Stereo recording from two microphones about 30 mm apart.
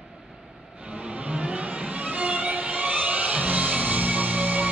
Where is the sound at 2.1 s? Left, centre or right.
Right.